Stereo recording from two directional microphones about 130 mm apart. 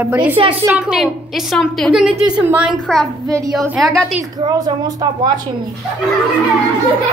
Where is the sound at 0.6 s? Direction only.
5° right (ahead or behind).